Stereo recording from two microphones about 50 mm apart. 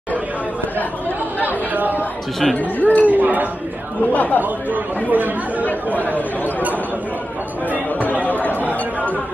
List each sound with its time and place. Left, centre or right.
1.4 s speech: right
2.5 s speech: left
3.1 s speech: right
4.1 s speech: left
5.1 s speech: right
5.9 s speech: left
8.3 s chatter: left